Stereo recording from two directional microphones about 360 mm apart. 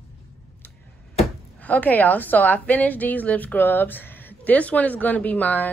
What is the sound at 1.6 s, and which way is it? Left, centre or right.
A woman's voice, centre.